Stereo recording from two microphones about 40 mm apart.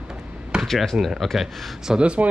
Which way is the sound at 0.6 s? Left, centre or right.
Centre.